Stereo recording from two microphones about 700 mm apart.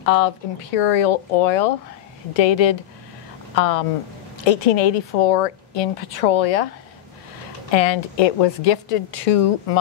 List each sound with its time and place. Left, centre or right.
0.0 s speech: left
7.7 s speech: left